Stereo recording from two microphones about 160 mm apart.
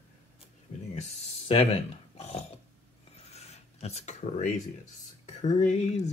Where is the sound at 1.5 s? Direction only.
40° left (ahead or behind).